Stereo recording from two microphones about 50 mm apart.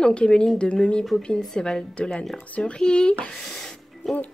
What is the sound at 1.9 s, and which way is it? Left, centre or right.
Speech, left.